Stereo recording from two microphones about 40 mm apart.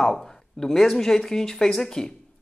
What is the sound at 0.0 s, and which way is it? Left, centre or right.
A man's voice, centre.